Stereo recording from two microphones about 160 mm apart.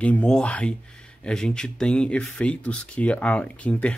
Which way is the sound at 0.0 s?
10° left (ahead or behind).